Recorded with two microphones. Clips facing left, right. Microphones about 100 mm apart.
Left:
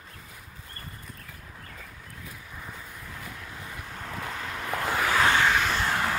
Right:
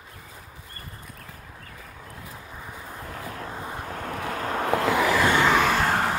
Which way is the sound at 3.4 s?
45° right (ahead or behind).